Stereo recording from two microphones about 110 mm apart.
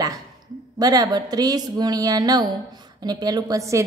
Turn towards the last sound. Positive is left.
turn(degrees=-30)  # may be behind; listen again after turning